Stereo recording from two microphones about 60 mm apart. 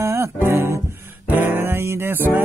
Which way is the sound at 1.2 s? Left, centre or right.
Right.